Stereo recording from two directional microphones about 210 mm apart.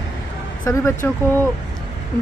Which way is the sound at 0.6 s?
10° left (ahead or behind).